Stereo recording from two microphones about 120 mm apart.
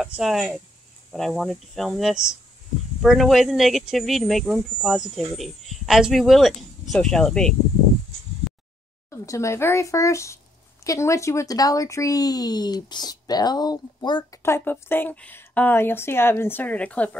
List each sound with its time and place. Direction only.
0.0 s speech: centre (ahead or behind)
9.1 s speech: 25° left (ahead or behind)
14.4 s a woman's voice: 20° left (ahead or behind)